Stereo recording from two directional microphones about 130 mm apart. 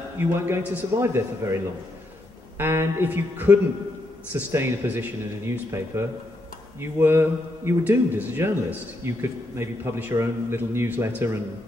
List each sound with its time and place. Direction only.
0.2 s a man's voice: 20° right (ahead or behind)